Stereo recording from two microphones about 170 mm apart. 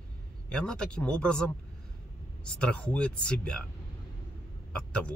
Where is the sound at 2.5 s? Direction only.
5° left (ahead or behind).